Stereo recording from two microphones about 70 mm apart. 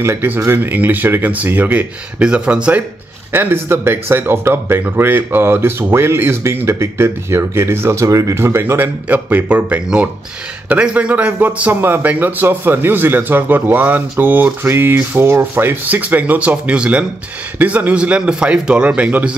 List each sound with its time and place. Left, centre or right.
0.0 s a man's voice: right; by 2.8 s centre
3.3 s speech: right
8.4 s speech: right
9.1 s a man's voice: right